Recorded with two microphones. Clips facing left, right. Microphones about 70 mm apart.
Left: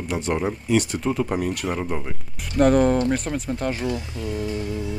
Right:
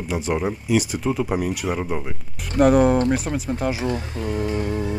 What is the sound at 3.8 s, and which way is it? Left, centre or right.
Speech, right.